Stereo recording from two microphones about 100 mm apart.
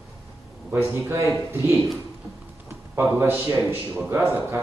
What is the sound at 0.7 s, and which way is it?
Speech, 25° right (ahead or behind).